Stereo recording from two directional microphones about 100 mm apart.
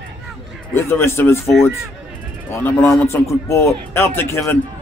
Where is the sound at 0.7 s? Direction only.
25° left (ahead or behind).